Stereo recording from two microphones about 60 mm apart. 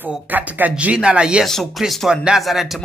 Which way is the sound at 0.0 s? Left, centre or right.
Right.